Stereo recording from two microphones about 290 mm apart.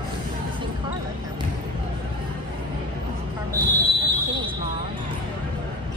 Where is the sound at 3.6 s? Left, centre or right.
Centre.